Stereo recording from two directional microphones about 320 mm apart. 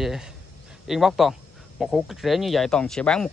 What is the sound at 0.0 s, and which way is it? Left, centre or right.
Speech, centre.